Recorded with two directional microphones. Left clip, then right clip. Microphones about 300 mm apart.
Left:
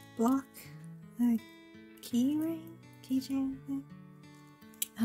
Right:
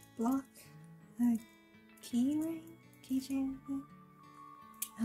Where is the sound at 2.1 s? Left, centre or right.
Left.